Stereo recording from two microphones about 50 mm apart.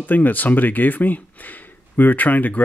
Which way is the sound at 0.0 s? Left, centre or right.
Left.